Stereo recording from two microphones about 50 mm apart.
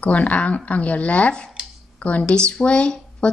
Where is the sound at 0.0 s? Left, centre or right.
Left.